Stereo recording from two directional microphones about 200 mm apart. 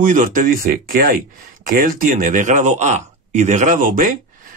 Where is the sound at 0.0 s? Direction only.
40° right (ahead or behind).